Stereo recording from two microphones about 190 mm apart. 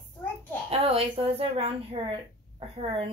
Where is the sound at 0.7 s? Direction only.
30° right (ahead or behind).